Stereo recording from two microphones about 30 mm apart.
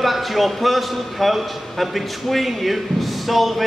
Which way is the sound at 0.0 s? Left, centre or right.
Centre.